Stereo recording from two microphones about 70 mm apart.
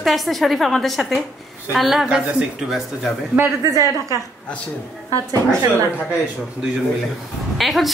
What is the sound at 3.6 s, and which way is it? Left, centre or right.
Speech, right.